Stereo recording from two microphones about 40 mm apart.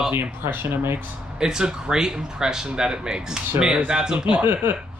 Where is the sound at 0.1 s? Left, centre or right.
Right.